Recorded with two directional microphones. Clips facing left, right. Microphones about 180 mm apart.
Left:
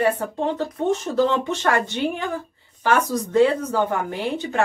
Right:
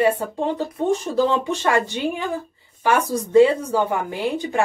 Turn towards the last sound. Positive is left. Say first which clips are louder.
# right 2 dB
turn(degrees=-15)  # may be behind; listen again after turning